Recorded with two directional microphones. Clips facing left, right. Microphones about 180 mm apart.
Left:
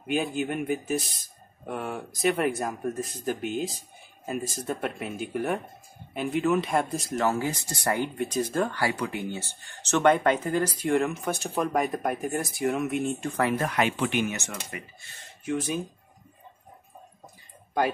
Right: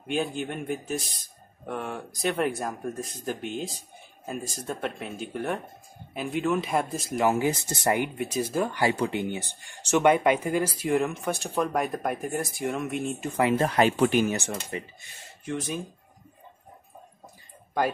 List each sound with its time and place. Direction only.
0.0 s speech: 5° left (ahead or behind)
7.2 s speech: 15° right (ahead or behind)
8.2 s speech: 10° right (ahead or behind)
8.7 s speech: 20° right (ahead or behind); by 13.4 s centre (ahead or behind)
13.6 s speech: 35° right (ahead or behind)
15.4 s speech: 5° left (ahead or behind)